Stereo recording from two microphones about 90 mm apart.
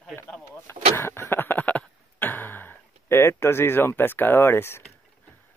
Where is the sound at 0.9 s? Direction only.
25° left (ahead or behind).